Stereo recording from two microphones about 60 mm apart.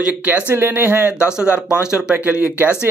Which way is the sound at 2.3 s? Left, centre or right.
Right.